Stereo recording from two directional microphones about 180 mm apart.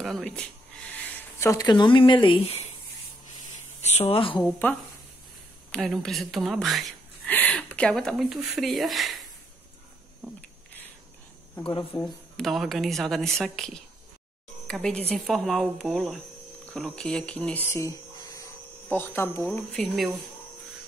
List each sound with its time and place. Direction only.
0.0 s speech: centre (ahead or behind); by 2.7 s 35° left (ahead or behind)
3.8 s a woman's voice: 35° left (ahead or behind)
4.4 s speech: 10° left (ahead or behind)
11.9 s a woman's voice: 5° left (ahead or behind)